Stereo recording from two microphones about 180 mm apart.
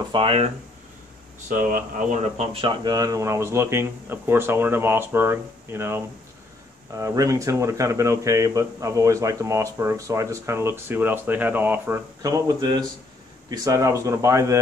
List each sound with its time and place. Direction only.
0.1 s speech: 30° right (ahead or behind)
2.2 s speech: 35° right (ahead or behind); by 14.6 s 15° right (ahead or behind)